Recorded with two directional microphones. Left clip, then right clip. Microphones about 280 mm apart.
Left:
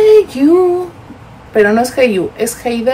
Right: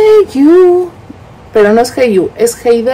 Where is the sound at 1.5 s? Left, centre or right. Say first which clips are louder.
Right 3 dB; centre.